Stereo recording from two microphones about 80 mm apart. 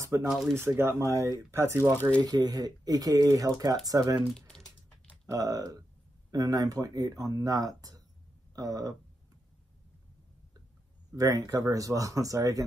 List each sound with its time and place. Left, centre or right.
0.0 s speech: right
0.3 s speech: centre
0.6 s speech: right
2.0 s speech: centre
2.2 s speech: right
5.2 s speech: right
11.1 s speech: right